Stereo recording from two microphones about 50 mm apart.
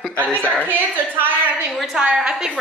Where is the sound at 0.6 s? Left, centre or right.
Right.